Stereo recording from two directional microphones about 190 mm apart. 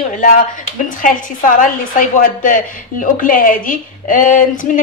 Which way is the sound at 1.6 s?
45° left (ahead or behind).